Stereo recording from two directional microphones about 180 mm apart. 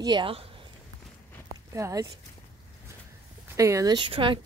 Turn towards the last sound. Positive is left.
turn(degrees=-30)  # may be behind; listen again after turning